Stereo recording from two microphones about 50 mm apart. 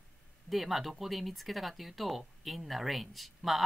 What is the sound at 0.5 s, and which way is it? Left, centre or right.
Speech, centre.